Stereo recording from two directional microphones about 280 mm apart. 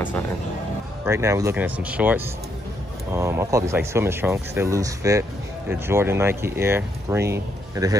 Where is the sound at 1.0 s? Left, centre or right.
Centre.